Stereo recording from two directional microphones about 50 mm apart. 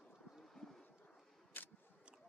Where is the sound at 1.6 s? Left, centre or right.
Left.